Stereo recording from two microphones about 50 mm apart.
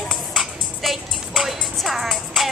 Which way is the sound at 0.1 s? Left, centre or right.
Centre.